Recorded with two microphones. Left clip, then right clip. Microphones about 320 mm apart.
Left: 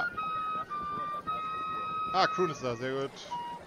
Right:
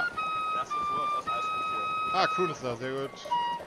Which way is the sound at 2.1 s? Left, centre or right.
Centre.